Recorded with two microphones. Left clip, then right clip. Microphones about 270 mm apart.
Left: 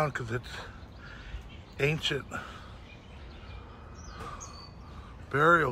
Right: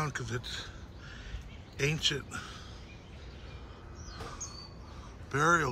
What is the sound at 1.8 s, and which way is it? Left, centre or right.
Speech, centre.